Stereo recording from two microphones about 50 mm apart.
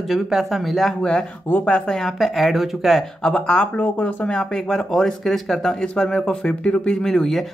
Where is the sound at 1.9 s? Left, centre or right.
Centre.